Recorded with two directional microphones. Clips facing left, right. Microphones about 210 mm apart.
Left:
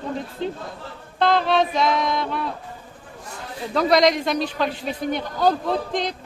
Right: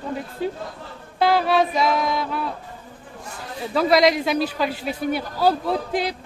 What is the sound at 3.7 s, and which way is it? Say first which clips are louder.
A man's voice: even; 5° right (ahead or behind).